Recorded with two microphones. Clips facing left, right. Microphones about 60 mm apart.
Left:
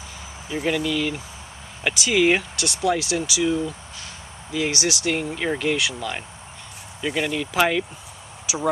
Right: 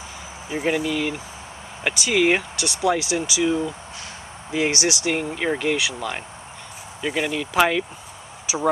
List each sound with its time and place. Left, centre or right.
0.7 s speech: centre
2.0 s speech: centre
4.5 s speech: right
5.0 s speech: centre